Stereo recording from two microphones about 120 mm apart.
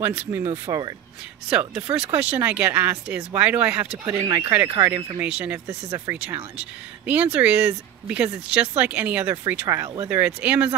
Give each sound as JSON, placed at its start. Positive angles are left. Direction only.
{"t": 0.3, "sound": "speech", "side_deg": -20}
{"t": 1.5, "sound": "speech", "side_deg": -10}
{"t": 4.0, "sound": "speech", "side_deg": -25}